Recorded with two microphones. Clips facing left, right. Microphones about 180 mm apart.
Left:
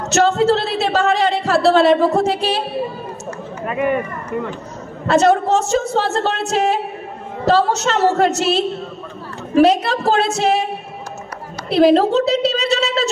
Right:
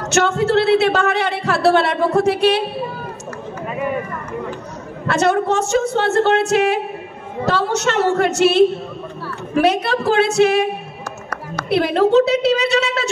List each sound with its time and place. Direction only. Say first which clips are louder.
0.5 s a man's voice: right 3 dB; 60° right (ahead or behind)
3.6 s speech: left 4 dB; 70° left (ahead or behind)
5.0 s a man's voice: left 3 dB; 60° right (ahead or behind)